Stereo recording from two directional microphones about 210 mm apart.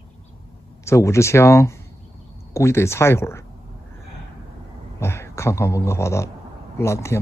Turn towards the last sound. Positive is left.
turn(degrees=15)  # may be behind; listen again after turning